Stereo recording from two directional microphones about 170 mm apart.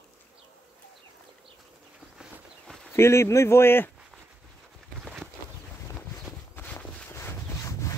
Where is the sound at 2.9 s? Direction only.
15° left (ahead or behind).